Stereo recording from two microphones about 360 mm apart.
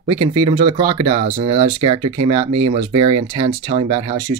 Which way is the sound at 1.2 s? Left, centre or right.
Right.